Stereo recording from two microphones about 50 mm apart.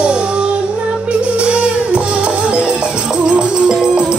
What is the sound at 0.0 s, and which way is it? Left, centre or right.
Music, right.